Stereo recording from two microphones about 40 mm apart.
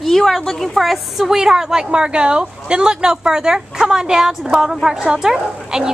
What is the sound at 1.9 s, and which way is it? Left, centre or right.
Speech, right.